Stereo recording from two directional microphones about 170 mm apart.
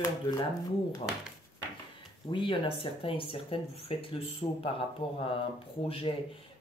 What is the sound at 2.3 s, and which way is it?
Speech, 30° left (ahead or behind).